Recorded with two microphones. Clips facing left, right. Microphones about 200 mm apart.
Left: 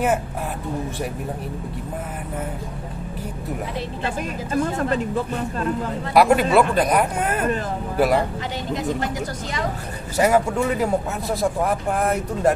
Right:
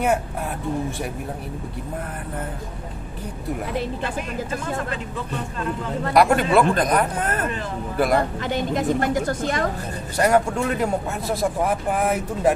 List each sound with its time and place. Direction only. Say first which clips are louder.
4.8 s speech: left 8 dB; 40° left (ahead or behind)
6.1 s speech: left 1 dB; 5° left (ahead or behind)
8.7 s speech: right 3 dB; 55° right (ahead or behind)
10.1 s speech: left 1 dB; 5° left (ahead or behind)